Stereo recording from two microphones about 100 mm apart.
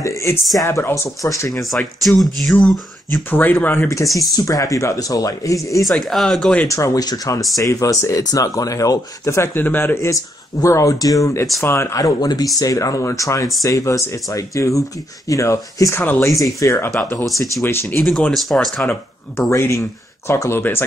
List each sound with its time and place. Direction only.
0.0 s speech: 30° left (ahead or behind)
1.6 s speech: centre (ahead or behind)
3.3 s speech: 20° left (ahead or behind)
4.0 s speech: centre (ahead or behind)
4.4 s speech: 35° left (ahead or behind)
5.9 s speech: centre (ahead or behind)
6.7 s speech: 35° left (ahead or behind)
17.2 s speech: centre (ahead or behind)
17.6 s speech: 25° left (ahead or behind)
18.0 s speech: 5° left (ahead or behind)
19.5 s speech: 30° left (ahead or behind)